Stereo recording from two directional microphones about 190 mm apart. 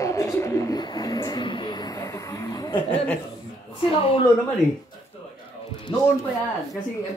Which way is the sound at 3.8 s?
25° left (ahead or behind).